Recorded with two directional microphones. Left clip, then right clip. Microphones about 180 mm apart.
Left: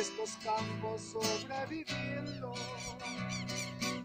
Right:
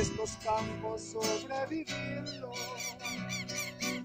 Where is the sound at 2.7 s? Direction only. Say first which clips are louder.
Right 3 dB; 60° right (ahead or behind).